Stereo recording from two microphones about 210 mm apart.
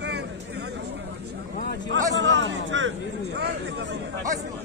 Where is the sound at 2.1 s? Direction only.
60° right (ahead or behind).